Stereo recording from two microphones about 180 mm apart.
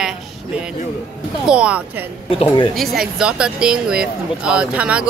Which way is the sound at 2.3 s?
30° left (ahead or behind).